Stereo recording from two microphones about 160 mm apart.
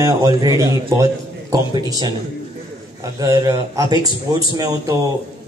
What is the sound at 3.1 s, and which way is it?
A man's voice, 20° right (ahead or behind).